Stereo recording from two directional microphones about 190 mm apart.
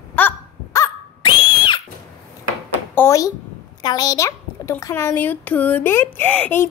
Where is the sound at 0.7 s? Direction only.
15° left (ahead or behind).